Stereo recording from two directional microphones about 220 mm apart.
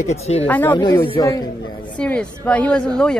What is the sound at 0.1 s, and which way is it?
Speech, 30° left (ahead or behind).